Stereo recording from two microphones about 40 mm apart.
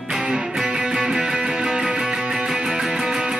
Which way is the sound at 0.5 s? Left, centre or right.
Right.